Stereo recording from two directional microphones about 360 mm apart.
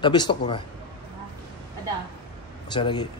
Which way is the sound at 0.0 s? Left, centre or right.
Centre.